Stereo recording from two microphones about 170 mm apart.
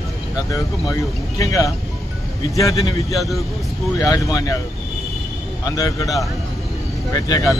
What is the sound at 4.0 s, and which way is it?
Speech, 20° left (ahead or behind).